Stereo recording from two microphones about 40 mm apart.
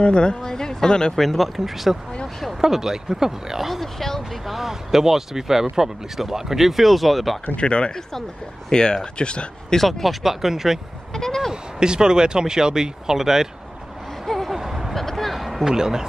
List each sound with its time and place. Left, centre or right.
0.0 s speech: left
1.1 s speech: centre
3.8 s speech: centre
4.5 s speech: centre
7.5 s speech: left
9.8 s speech: centre
11.1 s a sound: centre
11.8 s speech: centre
14.2 s a sound: centre
14.5 s a sound: centre
15.0 s a sound: centre
15.6 s speech: centre